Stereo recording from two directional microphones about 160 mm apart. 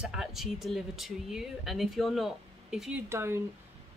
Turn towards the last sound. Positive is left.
turn(degrees=-15)  # may be behind; listen again after turning